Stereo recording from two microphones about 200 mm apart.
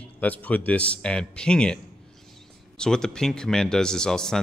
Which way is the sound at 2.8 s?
5° left (ahead or behind).